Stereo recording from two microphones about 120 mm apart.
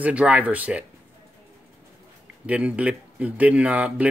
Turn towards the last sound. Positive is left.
turn(degrees=-10)  # may be behind; listen again after turning